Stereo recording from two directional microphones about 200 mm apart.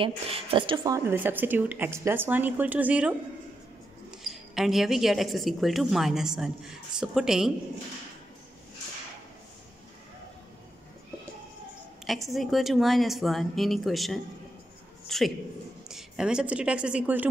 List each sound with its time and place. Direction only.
0.0 s a woman's voice: 25° right (ahead or behind); by 3.2 s 5° right (ahead or behind)
4.2 s a woman's voice: centre (ahead or behind)
12.1 s a woman's voice: centre (ahead or behind)